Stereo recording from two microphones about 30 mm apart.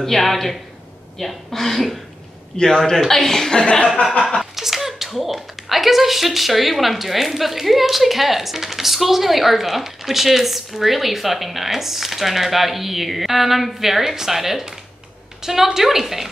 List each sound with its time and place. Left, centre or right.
0.0 s speech: centre
2.5 s a man's voice: left
4.4 s a woman's voice: centre